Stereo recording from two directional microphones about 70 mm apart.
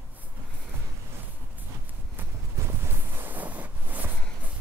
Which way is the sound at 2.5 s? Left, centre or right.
Right.